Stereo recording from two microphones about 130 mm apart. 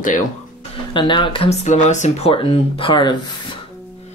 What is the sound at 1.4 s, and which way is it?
Speech, 65° left (ahead or behind).